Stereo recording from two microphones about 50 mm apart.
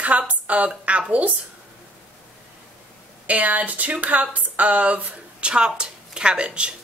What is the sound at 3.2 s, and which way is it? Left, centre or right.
Speech, right.